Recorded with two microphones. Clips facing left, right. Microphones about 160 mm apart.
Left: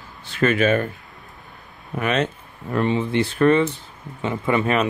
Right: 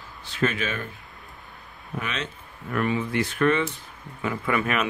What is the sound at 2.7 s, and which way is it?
Speech, 30° left (ahead or behind).